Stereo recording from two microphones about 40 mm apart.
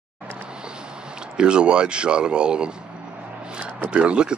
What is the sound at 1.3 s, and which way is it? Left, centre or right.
Speech, right.